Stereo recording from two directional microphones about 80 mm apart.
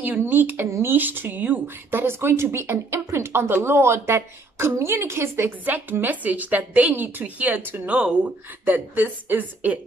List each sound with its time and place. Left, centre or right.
0.0 s speech: right
7.9 s speech: centre
8.6 s speech: right